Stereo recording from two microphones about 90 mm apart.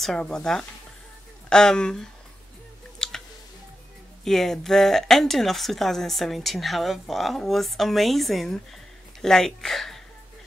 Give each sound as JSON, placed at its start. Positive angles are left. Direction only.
{"t": 0.0, "sound": "speech", "side_deg": 5}
{"t": 3.0, "sound": "a sound", "side_deg": 5}
{"t": 4.2, "sound": "a woman's voice", "side_deg": 5}